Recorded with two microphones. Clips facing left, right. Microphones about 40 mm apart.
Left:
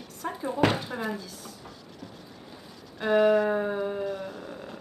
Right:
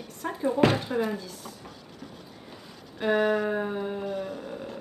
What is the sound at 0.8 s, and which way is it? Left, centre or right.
Speech, centre.